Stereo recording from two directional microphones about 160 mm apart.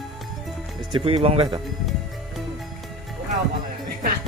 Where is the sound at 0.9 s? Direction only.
35° right (ahead or behind).